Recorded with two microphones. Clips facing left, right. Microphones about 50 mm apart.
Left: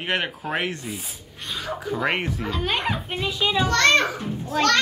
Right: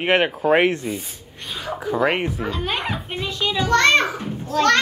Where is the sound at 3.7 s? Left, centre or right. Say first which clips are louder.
Right 4 dB; centre.